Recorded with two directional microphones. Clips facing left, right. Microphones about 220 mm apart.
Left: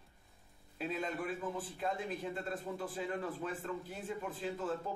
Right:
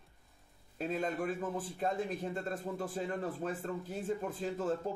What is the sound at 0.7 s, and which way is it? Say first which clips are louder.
Speech: right 4 dB; 45° right (ahead or behind).